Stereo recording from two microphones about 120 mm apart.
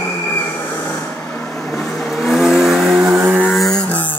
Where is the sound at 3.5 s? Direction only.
Centre (ahead or behind).